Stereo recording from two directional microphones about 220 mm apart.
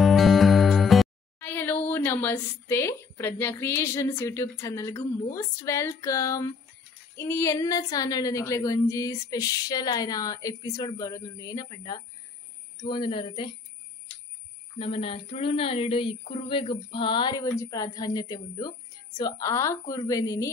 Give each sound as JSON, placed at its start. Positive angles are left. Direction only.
{"t": 0.0, "sound": "music", "side_deg": 0}
{"t": 7.2, "sound": "a woman's voice", "side_deg": 10}
{"t": 14.8, "sound": "speech", "side_deg": 25}